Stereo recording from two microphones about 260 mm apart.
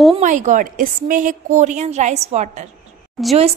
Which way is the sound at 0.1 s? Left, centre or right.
Right.